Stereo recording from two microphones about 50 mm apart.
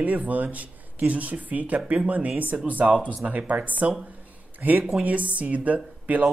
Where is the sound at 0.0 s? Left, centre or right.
Right.